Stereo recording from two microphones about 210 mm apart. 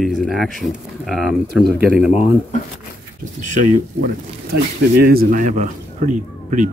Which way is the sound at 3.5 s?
40° right (ahead or behind).